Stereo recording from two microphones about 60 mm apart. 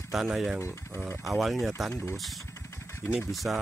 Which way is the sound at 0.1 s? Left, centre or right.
Centre.